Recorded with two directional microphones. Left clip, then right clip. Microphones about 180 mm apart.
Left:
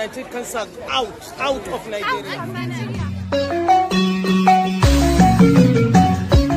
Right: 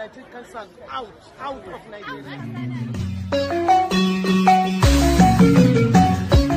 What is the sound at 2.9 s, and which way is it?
Music, centre (ahead or behind).